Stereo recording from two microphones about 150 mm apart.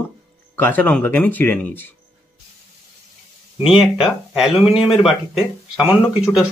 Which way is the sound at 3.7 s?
Centre (ahead or behind).